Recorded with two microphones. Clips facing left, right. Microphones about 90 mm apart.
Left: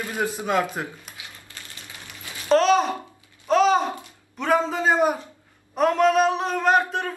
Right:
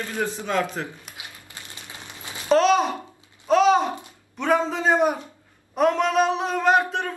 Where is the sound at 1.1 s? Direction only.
20° right (ahead or behind).